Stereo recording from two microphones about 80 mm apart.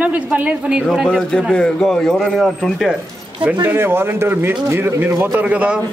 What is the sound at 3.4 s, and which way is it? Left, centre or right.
A woman's voice, right.